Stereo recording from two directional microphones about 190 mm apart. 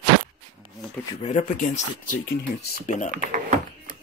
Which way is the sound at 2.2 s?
90° left.